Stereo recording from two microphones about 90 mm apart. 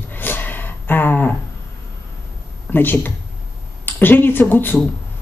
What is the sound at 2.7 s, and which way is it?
Speech, 20° left (ahead or behind).